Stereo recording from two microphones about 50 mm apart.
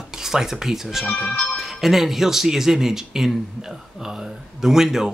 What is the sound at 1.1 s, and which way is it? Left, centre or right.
Speech, centre.